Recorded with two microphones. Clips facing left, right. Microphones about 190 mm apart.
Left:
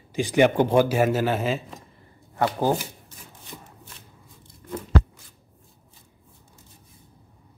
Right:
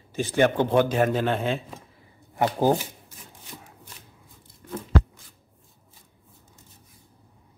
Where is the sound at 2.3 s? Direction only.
15° right (ahead or behind).